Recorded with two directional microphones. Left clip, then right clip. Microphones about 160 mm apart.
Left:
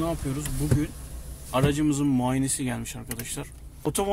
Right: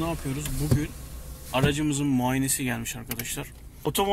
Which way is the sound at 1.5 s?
25° left (ahead or behind).